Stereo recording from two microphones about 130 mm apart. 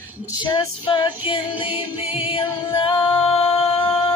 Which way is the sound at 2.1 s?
45° left (ahead or behind).